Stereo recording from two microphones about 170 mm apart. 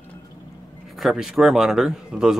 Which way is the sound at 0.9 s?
Centre (ahead or behind).